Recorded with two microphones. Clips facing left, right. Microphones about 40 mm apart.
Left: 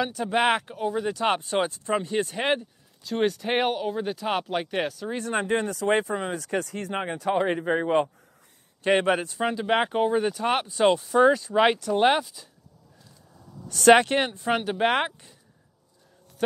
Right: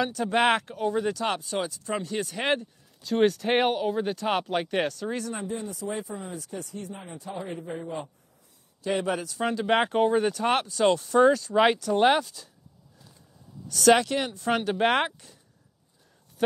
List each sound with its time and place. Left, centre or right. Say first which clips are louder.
0.0 s speech: even; centre
1.1 s speech: left 4 dB; left
1.4 s speech: left 4 dB; left
2.0 s speech: left 4 dB; left
2.4 s speech: left 1 dB; centre
5.3 s speech: left 8 dB; left
8.8 s a man's voice: left 6 dB; left
9.4 s speech: even; centre
10.7 s speech: left 4 dB; centre
11.0 s speech: left 1 dB; centre
13.7 s speech: left 3 dB; left
13.9 s speech: left 4 dB; left
14.4 s speech: even; centre